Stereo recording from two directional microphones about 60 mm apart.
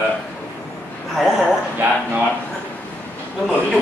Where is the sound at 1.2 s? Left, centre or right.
Centre.